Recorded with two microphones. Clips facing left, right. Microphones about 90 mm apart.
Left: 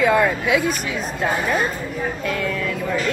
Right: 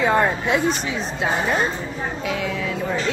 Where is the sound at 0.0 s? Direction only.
30° right (ahead or behind).